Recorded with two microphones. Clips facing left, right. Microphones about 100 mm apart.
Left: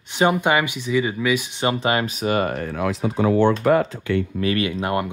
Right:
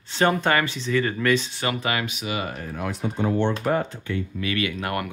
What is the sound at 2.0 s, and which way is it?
Speech, 45° left (ahead or behind).